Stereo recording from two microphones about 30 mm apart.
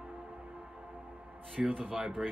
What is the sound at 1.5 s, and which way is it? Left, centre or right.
Speech, right.